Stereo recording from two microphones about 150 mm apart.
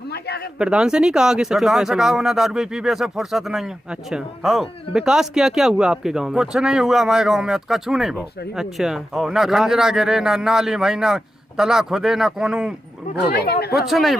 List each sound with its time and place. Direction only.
0.1 s a sound: 90° left
0.6 s speech: 5° right (ahead or behind)
13.1 s speech: 90° left
13.8 s speech: centre (ahead or behind)